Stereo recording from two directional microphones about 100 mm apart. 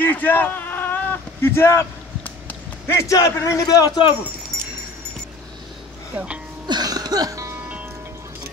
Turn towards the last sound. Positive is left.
turn(degrees=-35)  # may be behind; listen again after turning